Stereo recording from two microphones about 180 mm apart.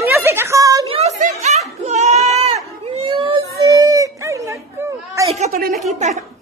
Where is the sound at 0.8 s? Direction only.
35° right (ahead or behind); by 5.3 s 15° right (ahead or behind).